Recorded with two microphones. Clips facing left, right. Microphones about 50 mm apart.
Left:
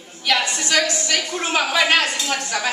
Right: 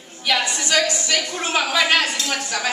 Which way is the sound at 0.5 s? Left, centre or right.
Centre.